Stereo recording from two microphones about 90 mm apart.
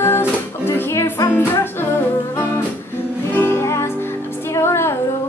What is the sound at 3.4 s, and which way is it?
Music, 25° left (ahead or behind).